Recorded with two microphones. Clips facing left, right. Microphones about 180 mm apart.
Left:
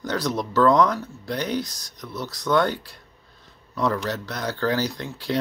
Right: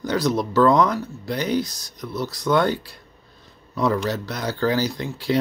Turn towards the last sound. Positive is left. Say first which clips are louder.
# right 4 dB
turn(degrees=-5)  # may be behind; listen again after turning